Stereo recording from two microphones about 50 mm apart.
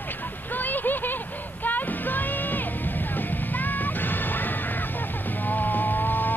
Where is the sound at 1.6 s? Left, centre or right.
Left.